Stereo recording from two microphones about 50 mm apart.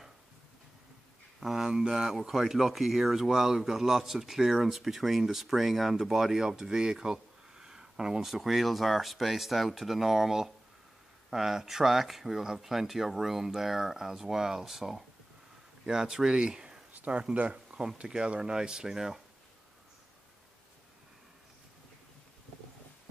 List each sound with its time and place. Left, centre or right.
1.4 s speech: centre
8.3 s speech: centre
16.9 s speech: right; by 19.2 s centre